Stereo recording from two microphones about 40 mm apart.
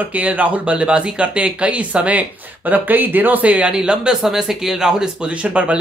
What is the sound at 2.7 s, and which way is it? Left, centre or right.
Speech, right.